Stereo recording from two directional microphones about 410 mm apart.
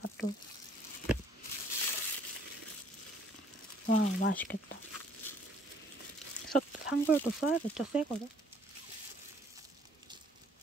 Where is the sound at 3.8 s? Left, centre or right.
Left.